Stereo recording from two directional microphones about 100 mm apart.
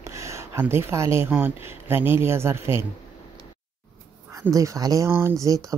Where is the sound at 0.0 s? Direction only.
30° right (ahead or behind).